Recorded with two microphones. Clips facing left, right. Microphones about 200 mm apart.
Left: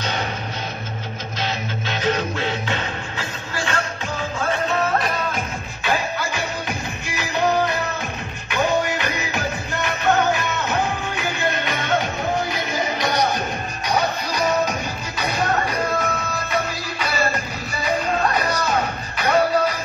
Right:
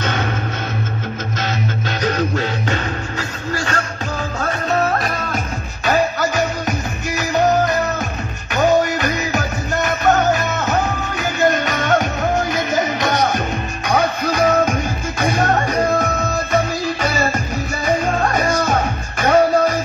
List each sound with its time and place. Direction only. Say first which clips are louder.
0.0 s music: right 4 dB; 50° right (ahead or behind)
1.4 s music: right 3 dB; 45° right (ahead or behind)